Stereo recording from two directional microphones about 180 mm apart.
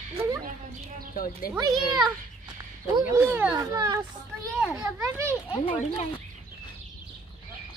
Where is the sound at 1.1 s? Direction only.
50° left (ahead or behind).